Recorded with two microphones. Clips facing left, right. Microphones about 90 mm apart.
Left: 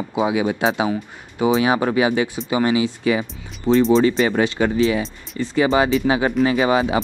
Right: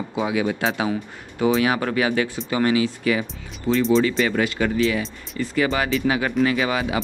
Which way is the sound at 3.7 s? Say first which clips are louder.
Left 4 dB; 40° left (ahead or behind).